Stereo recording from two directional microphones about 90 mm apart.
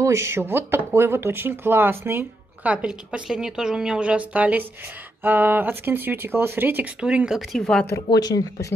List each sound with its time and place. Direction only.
0.0 s speech: 30° right (ahead or behind); by 7.4 s 10° right (ahead or behind)
7.5 s speech: 5° left (ahead or behind)
8.1 s speech: 45° left (ahead or behind)